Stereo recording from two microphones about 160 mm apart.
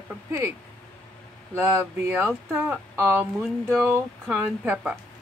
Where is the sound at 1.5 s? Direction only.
10° right (ahead or behind).